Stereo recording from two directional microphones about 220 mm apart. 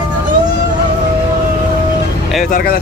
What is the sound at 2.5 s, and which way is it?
Speech, 45° left (ahead or behind).